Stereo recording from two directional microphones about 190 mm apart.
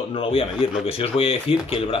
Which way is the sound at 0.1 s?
30° left (ahead or behind).